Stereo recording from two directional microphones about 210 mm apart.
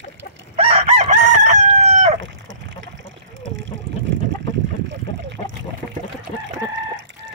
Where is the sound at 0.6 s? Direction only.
30° right (ahead or behind).